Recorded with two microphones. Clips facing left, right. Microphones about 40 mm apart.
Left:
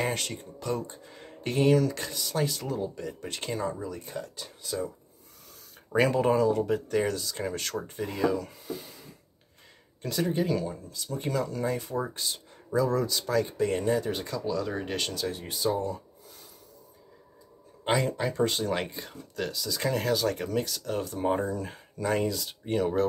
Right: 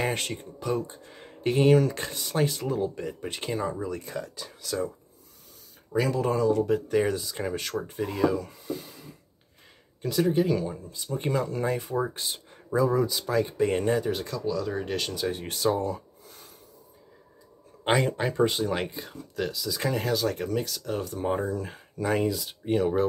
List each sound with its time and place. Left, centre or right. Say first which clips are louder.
0.1 s speech: right 2 dB; right
1.7 s speech: right 1 dB; right; by 3.7 s centre
5.9 s speech: left 2 dB; left
6.3 s speech: right 1 dB; centre
7.1 s speech: right 2 dB; centre
10.9 s speech: right 3 dB; right
13.6 s speech: right 2 dB; right
14.0 s speech: right 2 dB; centre
15.4 s speech: right 2 dB; right
17.8 s speech: right 2 dB; right
18.4 s speech: right 3 dB; centre